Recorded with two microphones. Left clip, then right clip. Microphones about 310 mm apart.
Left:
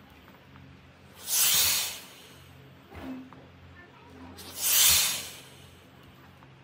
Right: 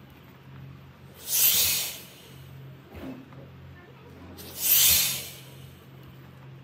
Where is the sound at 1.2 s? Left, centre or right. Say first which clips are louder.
Even; centre.